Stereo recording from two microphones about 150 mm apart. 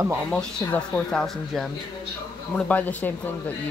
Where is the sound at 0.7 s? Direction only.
5° left (ahead or behind).